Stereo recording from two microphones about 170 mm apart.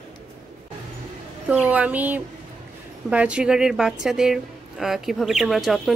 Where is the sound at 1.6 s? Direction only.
10° right (ahead or behind).